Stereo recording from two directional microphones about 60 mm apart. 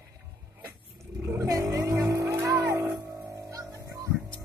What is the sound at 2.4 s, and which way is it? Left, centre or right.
Music, right.